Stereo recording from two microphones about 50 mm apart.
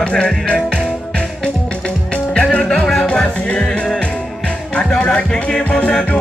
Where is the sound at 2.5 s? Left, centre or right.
Left.